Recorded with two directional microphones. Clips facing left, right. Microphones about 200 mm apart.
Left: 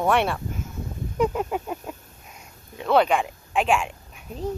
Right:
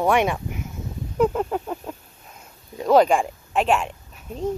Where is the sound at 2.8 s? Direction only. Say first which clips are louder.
Right 3 dB; 35° right (ahead or behind).